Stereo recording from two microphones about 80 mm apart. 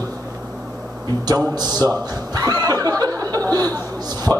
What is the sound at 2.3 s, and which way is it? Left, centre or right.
Chuckle, right.